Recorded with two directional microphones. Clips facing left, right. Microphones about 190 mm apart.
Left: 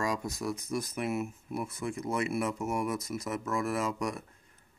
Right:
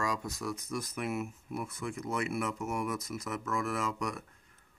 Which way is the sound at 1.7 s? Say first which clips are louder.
Left 3 dB; 30° left (ahead or behind).